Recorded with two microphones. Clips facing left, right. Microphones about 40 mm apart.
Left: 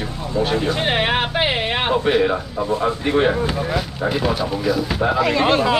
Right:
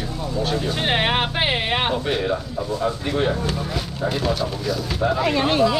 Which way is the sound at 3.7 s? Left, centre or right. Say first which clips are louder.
Left 3 dB; centre.